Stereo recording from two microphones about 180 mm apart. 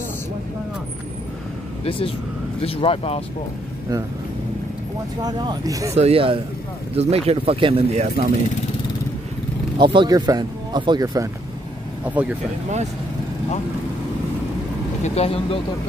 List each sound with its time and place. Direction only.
1.9 s speech: 30° left (ahead or behind)
5.2 s speech: 20° right (ahead or behind)
5.9 s speech: 35° right (ahead or behind)
9.8 s speech: 25° right (ahead or behind)
12.1 s speech: 10° right (ahead or behind)
15.0 s speech: 35° left (ahead or behind)